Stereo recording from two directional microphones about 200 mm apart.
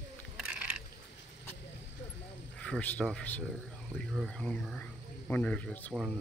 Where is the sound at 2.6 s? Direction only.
5° left (ahead or behind).